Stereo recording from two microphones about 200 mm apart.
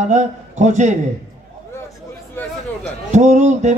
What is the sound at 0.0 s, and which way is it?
Speech, 35° right (ahead or behind).